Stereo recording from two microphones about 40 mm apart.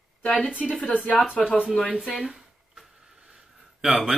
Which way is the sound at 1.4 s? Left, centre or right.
Centre.